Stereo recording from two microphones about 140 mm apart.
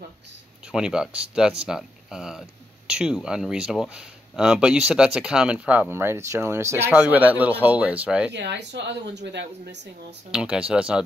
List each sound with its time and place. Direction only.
0.7 s speech: 5° right (ahead or behind)
10.3 s speech: 5° right (ahead or behind)